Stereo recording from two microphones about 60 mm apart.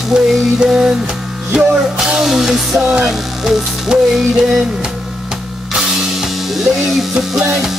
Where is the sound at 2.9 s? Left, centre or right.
Centre.